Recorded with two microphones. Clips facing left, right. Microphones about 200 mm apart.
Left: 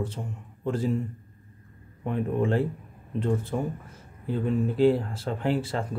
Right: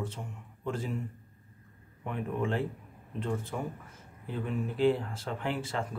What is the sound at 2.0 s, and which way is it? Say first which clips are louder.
Speech: left 7 dB; 35° left (ahead or behind).